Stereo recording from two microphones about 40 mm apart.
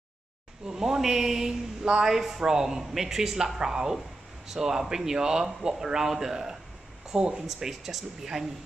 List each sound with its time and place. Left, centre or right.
0.7 s speech: centre
7.4 s speech: centre